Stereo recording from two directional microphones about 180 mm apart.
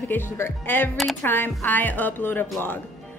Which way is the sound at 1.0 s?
Centre (ahead or behind).